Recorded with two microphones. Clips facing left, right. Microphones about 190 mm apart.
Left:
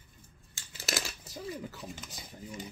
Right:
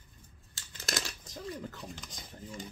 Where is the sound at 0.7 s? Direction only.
5° left (ahead or behind).